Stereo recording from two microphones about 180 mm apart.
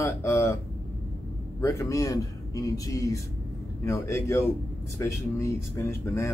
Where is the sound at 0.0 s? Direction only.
15° left (ahead or behind).